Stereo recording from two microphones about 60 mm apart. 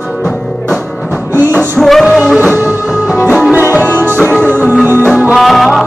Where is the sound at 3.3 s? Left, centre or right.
Right.